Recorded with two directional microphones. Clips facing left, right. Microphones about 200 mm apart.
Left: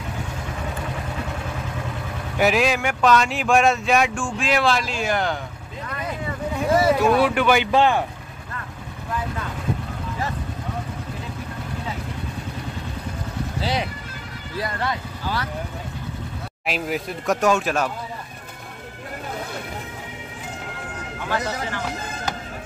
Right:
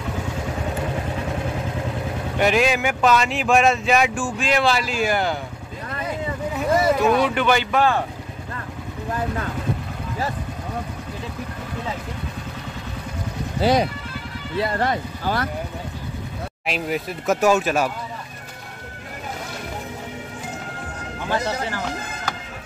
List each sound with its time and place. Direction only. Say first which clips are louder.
2.3 s speech: even; 5° left (ahead or behind)
6.5 s speech: left 1 dB; centre (ahead or behind)
7.7 s speech: left 1 dB; 20° left (ahead or behind)
13.6 s speech: right 9 dB; 50° right (ahead or behind)
16.6 s speech: even; centre (ahead or behind)